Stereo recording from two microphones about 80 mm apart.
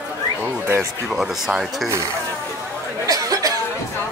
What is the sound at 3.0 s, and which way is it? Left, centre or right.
Cough, right.